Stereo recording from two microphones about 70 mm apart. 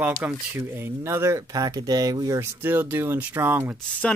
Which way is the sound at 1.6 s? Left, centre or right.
Right.